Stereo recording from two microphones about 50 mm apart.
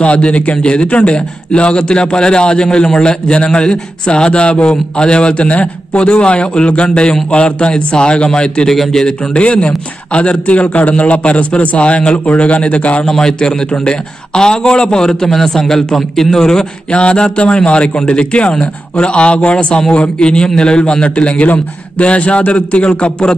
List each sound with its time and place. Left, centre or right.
0.0 s a man's voice: left
8.6 s a man's voice: centre
9.3 s a man's voice: left
13.1 s a man's voice: centre